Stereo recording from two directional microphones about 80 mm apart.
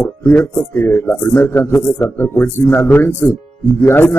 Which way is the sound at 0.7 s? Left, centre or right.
Left.